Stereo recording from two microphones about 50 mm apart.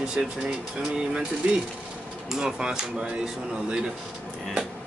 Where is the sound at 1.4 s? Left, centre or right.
Right.